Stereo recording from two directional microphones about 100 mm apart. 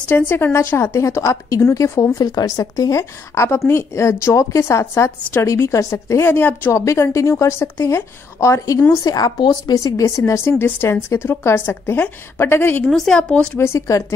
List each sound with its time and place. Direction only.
0.1 s a woman's voice: 20° left (ahead or behind)
6.7 s a woman's voice: 30° left (ahead or behind)
12.8 s speech: 5° left (ahead or behind)
13.6 s a woman's voice: 30° left (ahead or behind)